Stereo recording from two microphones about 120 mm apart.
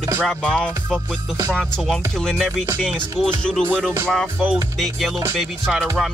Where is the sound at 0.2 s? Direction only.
5° left (ahead or behind).